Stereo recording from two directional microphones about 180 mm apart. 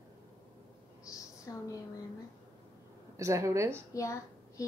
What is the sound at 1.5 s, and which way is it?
Speech, 20° left (ahead or behind).